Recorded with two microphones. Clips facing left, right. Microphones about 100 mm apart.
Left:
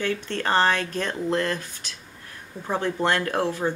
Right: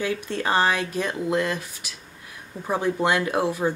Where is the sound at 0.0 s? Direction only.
10° right (ahead or behind).